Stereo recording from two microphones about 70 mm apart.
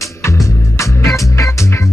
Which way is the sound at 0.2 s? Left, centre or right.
Left.